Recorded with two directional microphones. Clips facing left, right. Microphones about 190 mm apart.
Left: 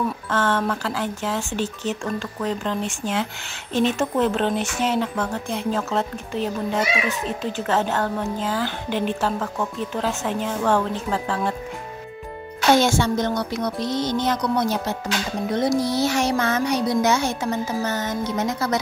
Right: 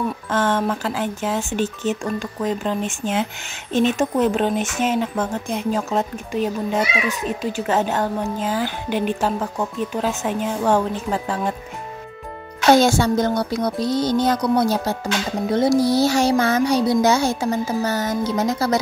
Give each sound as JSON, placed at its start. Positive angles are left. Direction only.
{"t": 0.3, "sound": "a woman's voice", "side_deg": -15}
{"t": 12.8, "sound": "music", "side_deg": -35}